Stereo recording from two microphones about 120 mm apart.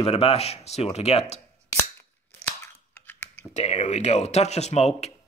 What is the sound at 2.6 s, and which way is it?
Scissors, 20° left (ahead or behind).